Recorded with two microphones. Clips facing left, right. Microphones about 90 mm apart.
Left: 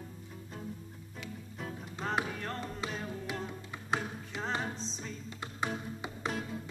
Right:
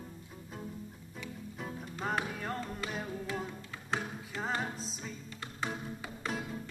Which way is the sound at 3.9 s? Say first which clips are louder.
Left 2 dB; 15° left (ahead or behind).